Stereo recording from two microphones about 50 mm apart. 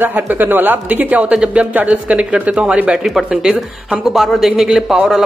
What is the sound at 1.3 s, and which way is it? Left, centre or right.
A man's voice, centre.